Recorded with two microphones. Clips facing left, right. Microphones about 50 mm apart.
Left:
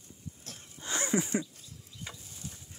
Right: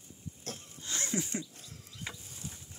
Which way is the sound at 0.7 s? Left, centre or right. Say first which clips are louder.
Left 6 dB; left.